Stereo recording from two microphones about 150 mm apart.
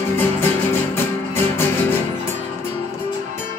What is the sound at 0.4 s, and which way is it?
Music, 15° left (ahead or behind).